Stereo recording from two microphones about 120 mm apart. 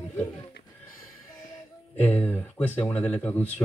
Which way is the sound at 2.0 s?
15° left (ahead or behind).